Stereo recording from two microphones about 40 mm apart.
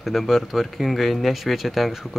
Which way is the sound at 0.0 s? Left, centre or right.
Centre.